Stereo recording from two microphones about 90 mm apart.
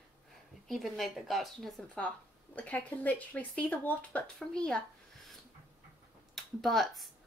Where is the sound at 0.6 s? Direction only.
Centre (ahead or behind).